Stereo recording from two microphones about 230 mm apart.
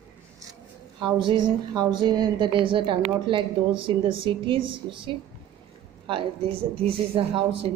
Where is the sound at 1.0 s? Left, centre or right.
Centre.